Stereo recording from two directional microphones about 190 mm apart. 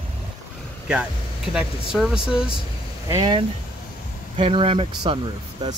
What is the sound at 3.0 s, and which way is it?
Speech, 20° right (ahead or behind).